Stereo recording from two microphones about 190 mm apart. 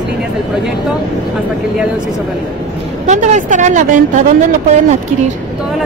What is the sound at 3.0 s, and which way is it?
Speech, 40° right (ahead or behind).